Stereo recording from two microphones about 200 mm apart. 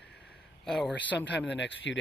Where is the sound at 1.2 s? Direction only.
60° left (ahead or behind).